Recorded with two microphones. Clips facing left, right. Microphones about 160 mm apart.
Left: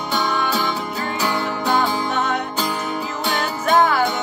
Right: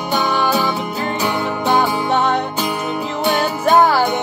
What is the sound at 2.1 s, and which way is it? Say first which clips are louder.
Music: right 5 dB; 30° right (ahead or behind).